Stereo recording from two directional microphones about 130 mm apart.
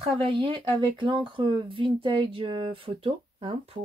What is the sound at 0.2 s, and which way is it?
Speech, 40° right (ahead or behind).